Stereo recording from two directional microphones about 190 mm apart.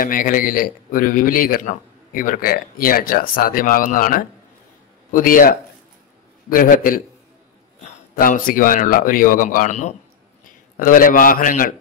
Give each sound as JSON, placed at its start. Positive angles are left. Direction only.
{"t": 0.0, "sound": "a man's voice", "side_deg": 45}